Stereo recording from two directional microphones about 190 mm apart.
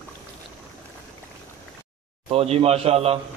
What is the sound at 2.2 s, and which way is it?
Speech, 30° right (ahead or behind).